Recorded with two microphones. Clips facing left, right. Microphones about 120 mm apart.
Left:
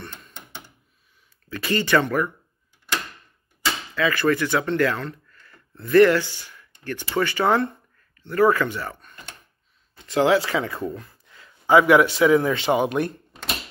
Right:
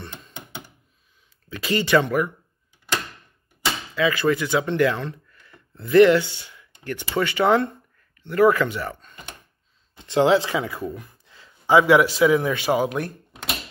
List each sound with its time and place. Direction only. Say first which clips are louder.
1.5 s speech: right 1 dB; 15° right (ahead or behind)
3.9 s speech: even; 15° right (ahead or behind)
10.0 s speech: right 1 dB; 25° right (ahead or behind)
10.7 s speech: left 1 dB; centre (ahead or behind)
11.0 s a sound: even; 20° right (ahead or behind)
11.6 s speech: even; 15° right (ahead or behind)